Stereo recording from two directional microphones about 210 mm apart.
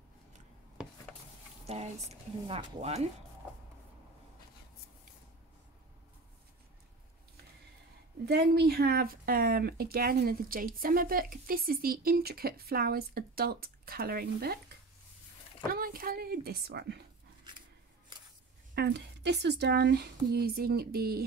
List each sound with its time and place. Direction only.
2.4 s speech: 30° right (ahead or behind)
8.3 s speech: 50° right (ahead or behind)
15.7 s speech: 45° right (ahead or behind)
18.8 s speech: 55° right (ahead or behind)